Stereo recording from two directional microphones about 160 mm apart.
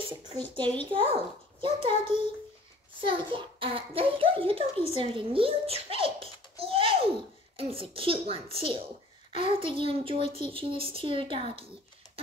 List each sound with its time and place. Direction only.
0.4 s a child's voice: 10° left (ahead or behind)
0.9 s a child's voice: 35° right (ahead or behind)
6.5 s a sound: 35° right (ahead or behind)
7.5 s a child's voice: 35° right (ahead or behind)